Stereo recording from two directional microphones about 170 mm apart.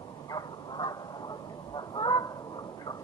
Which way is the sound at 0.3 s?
25° left (ahead or behind).